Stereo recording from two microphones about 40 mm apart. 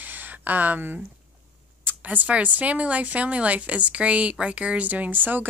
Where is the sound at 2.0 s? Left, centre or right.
Right.